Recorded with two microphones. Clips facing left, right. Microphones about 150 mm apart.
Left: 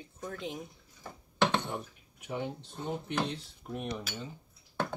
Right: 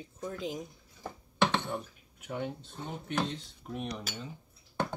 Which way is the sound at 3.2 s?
Centre (ahead or behind).